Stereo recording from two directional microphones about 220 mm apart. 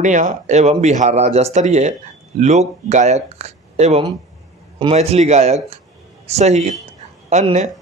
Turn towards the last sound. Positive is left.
turn(degrees=-30)  # may be behind; listen again after turning